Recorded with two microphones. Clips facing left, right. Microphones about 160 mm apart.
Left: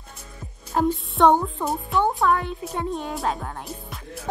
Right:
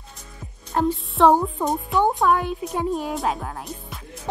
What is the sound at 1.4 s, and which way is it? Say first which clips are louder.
Speech: right 3 dB; 15° right (ahead or behind).